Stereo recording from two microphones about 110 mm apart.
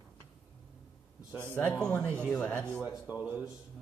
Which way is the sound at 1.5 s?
15° left (ahead or behind).